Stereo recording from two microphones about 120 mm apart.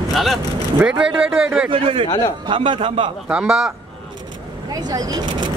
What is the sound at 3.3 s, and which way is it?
Speech, 5° right (ahead or behind).